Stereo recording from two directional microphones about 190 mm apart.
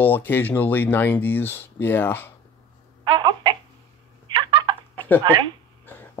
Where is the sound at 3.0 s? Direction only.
25° right (ahead or behind).